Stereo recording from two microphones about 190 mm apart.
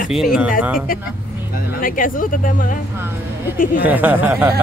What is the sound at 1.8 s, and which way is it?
Speech, 45° left (ahead or behind).